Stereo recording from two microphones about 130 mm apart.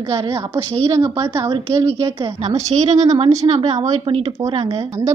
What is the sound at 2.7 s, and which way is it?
Speech, 60° right (ahead or behind).